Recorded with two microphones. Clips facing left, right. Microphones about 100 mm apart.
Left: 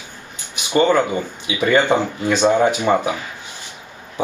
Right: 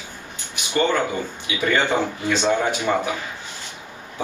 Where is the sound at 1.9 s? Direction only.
20° left (ahead or behind).